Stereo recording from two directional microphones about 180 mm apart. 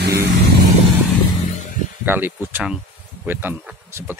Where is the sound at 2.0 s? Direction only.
10° right (ahead or behind).